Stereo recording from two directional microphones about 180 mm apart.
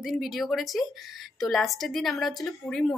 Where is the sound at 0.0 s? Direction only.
Centre (ahead or behind).